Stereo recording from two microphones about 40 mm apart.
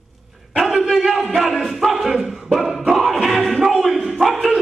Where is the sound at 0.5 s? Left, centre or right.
Centre.